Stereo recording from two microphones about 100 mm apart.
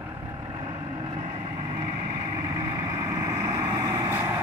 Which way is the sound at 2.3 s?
40° right (ahead or behind).